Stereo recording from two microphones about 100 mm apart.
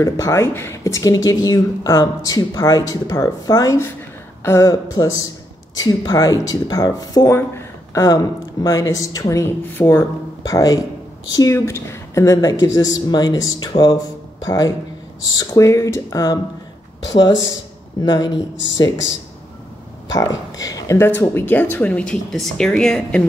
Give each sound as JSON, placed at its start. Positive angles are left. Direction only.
{"t": 0.0, "sound": "speech", "side_deg": 30}
{"t": 4.9, "sound": "speech", "side_deg": 40}
{"t": 7.2, "sound": "speech", "side_deg": 25}
{"t": 9.4, "sound": "speech", "side_deg": 25}
{"t": 11.5, "sound": "speech", "side_deg": 25}
{"t": 20.1, "sound": "speech", "side_deg": 40}
{"t": 21.0, "sound": "speech", "side_deg": 20}